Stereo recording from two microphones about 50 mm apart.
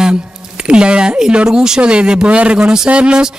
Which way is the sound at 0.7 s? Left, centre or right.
Centre.